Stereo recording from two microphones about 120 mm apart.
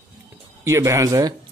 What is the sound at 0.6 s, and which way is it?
Speech, 25° right (ahead or behind).